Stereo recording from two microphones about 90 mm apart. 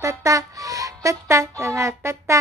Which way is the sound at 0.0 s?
35° right (ahead or behind).